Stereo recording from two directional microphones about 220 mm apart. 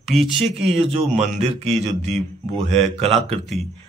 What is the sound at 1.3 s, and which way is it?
Speech, 30° right (ahead or behind).